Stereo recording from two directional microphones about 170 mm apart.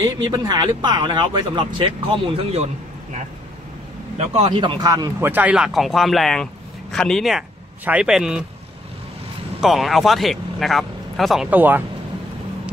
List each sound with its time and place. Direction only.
0.0 s speech: 20° right (ahead or behind); by 2.7 s 35° right (ahead or behind)
4.2 s speech: 35° right (ahead or behind)
5.3 s a man's voice: 10° right (ahead or behind)
9.6 s speech: centre (ahead or behind)